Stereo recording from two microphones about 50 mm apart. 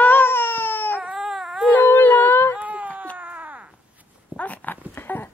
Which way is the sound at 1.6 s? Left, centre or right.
Left.